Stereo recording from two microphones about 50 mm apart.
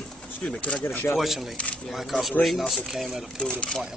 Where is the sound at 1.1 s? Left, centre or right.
Centre.